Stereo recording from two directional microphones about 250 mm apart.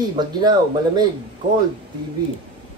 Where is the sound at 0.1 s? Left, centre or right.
Centre.